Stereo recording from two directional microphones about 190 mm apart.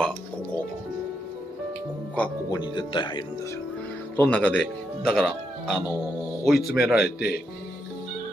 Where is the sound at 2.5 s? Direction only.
25° left (ahead or behind).